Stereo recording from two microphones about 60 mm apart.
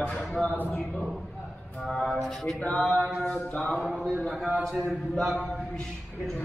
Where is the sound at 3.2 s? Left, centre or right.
Centre.